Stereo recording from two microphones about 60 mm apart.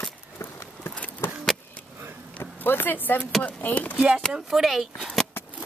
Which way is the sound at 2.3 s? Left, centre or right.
Left.